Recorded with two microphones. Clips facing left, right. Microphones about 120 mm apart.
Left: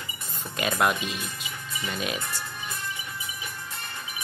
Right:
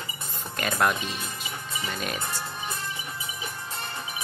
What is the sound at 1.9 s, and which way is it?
Speech, 5° left (ahead or behind).